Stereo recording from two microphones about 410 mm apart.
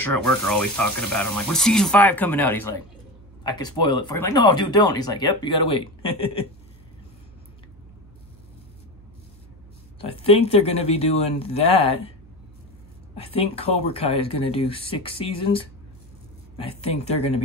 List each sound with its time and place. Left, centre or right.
0.0 s speech: centre
5.7 s speech: left
10.0 s speech: centre
13.1 s speech: centre
16.6 s speech: centre